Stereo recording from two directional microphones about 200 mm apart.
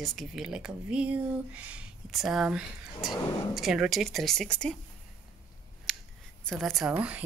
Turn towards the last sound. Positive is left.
turn(degrees=-5)  # may be behind; listen again after turning